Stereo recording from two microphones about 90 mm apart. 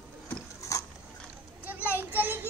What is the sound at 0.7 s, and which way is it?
Boat, 35° left (ahead or behind).